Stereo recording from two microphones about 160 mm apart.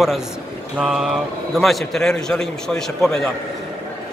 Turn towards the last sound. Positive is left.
turn(degrees=5)  # may be behind; listen again after turning